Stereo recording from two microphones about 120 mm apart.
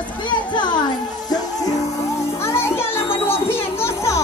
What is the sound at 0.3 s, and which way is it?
Music, 40° left (ahead or behind).